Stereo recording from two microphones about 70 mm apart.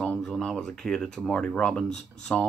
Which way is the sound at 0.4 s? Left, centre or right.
Centre.